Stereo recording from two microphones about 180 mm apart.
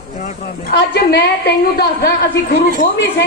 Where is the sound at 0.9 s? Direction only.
65° left (ahead or behind).